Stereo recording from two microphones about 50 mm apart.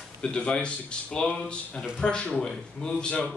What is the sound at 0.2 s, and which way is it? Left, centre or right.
A man's voice, centre.